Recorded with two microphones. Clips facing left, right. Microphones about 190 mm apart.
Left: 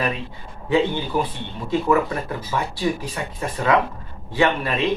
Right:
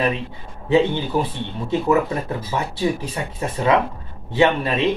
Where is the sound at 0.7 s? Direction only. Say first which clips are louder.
Right 3 dB; 25° right (ahead or behind).